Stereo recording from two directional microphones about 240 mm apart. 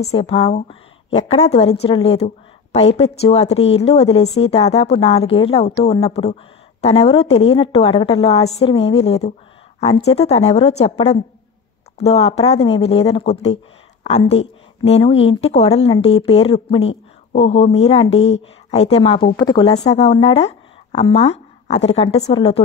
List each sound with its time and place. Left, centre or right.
0.0 s a woman's voice: left